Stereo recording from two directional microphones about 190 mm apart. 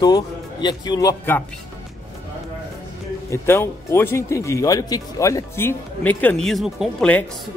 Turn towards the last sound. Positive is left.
turn(degrees=0)  # may be behind; listen again after turning